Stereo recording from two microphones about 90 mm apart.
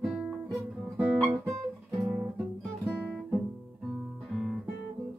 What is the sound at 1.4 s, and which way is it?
Guitar, 40° right (ahead or behind).